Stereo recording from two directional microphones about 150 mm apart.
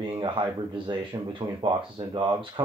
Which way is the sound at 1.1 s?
30° right (ahead or behind).